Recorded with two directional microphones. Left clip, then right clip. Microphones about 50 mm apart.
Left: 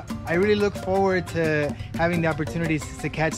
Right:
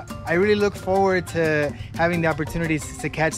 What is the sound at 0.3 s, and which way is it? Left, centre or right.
Speech, right.